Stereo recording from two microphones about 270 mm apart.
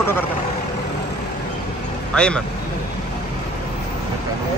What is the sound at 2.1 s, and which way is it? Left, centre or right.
Speech, centre.